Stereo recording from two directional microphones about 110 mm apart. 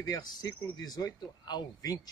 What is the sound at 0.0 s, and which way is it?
A man's voice, 35° left (ahead or behind).